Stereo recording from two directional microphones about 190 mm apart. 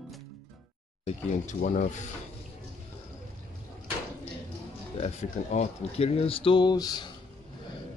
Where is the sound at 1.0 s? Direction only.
40° left (ahead or behind).